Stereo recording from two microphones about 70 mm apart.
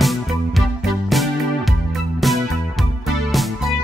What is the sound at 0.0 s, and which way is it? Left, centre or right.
Music, centre.